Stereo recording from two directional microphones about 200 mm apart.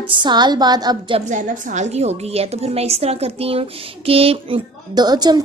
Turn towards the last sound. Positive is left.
turn(degrees=-20)  # may be behind; listen again after turning